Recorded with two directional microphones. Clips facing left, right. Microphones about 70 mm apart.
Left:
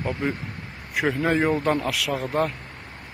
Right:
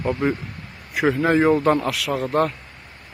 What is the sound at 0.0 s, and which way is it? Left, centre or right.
Speech, centre.